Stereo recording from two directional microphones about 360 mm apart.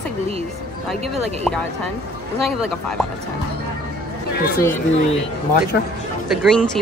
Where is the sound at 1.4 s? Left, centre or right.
Centre.